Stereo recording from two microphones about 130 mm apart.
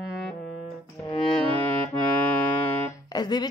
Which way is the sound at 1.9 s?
10° left (ahead or behind).